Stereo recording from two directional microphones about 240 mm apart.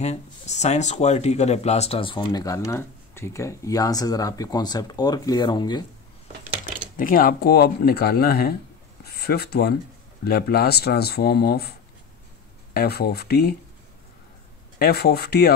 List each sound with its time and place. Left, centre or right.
0.0 s speech: left
7.0 s speech: left
12.7 s speech: left
14.8 s speech: left